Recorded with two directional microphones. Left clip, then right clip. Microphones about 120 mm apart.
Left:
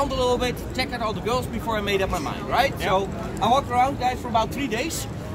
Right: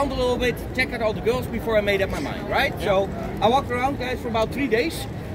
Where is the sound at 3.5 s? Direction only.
40° left (ahead or behind).